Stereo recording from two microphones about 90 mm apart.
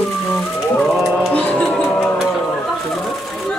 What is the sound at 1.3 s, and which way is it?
Speech, 15° left (ahead or behind).